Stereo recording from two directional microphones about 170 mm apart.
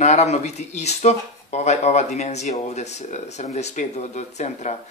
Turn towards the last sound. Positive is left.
turn(degrees=45)  # may be behind; listen again after turning